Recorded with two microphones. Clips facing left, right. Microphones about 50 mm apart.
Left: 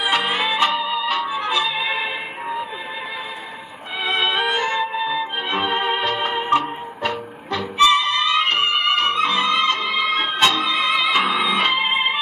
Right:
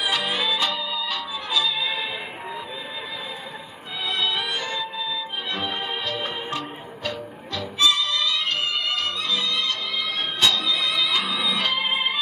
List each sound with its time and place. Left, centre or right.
0.0 s music: left
4.0 s music: left